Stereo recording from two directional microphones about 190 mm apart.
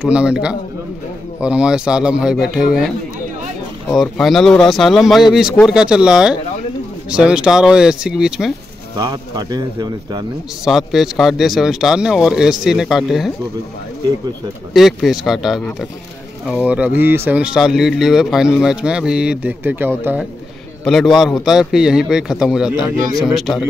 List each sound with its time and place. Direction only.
0.0 s speech: 5° right (ahead or behind)
3.9 s speech: centre (ahead or behind)
8.9 s speech: 20° right (ahead or behind)
10.6 s speech: centre (ahead or behind)
14.7 s speech: centre (ahead or behind)
20.8 s speech: centre (ahead or behind)